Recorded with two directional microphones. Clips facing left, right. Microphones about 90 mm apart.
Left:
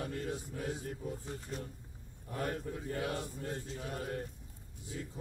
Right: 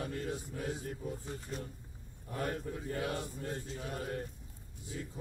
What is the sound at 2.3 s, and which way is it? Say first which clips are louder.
Mantra: even; centre (ahead or behind).